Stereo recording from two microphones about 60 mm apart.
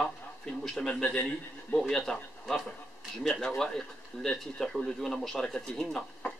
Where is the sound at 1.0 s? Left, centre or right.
Centre.